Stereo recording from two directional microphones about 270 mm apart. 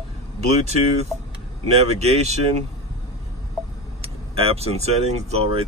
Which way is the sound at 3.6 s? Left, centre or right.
Centre.